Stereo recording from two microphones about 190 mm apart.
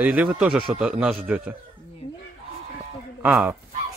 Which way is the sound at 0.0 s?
10° right (ahead or behind).